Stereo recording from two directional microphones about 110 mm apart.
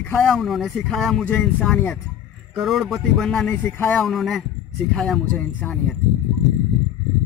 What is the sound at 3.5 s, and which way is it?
Speech, 15° left (ahead or behind).